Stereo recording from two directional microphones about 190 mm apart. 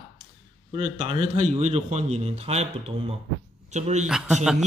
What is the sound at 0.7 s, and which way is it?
A man's voice, 30° right (ahead or behind).